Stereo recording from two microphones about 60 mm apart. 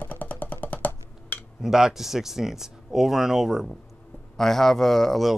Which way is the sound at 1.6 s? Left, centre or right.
Centre.